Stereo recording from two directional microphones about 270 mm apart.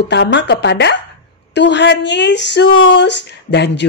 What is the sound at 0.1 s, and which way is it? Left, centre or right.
A woman's voice, left.